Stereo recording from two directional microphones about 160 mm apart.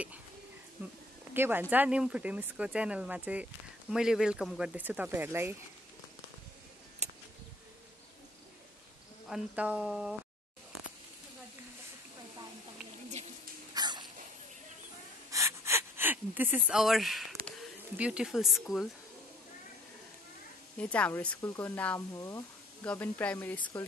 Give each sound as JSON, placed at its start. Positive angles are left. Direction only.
{"t": 1.3, "sound": "speech", "side_deg": -15}
{"t": 9.3, "sound": "speech", "side_deg": -5}
{"t": 13.7, "sound": "a sound", "side_deg": -25}
{"t": 15.3, "sound": "gasp", "side_deg": -15}
{"t": 17.9, "sound": "speech", "side_deg": -5}
{"t": 20.7, "sound": "speech", "side_deg": 10}
{"t": 23.6, "sound": "speech", "side_deg": 20}